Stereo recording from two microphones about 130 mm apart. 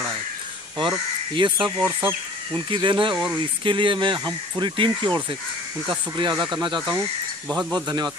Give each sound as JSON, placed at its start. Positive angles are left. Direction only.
{"t": 0.7, "sound": "speech", "side_deg": -40}
{"t": 1.9, "sound": "speech", "side_deg": -15}
{"t": 2.5, "sound": "speech", "side_deg": -40}
{"t": 6.3, "sound": "speech", "side_deg": 0}
{"t": 6.6, "sound": "speech", "side_deg": -35}
{"t": 7.4, "sound": "speech", "side_deg": 5}